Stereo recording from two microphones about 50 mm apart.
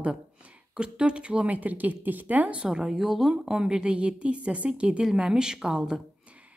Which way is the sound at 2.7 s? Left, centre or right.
Centre.